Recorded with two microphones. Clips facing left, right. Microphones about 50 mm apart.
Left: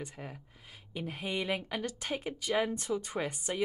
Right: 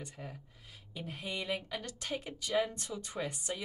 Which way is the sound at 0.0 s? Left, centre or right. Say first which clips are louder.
Left 3 dB; left.